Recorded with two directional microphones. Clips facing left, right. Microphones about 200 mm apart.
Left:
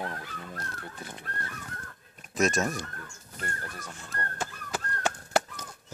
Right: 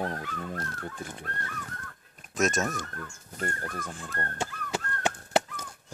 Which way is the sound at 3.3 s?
45° right (ahead or behind).